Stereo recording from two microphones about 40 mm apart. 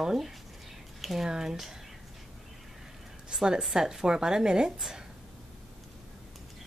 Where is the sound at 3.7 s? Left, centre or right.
Centre.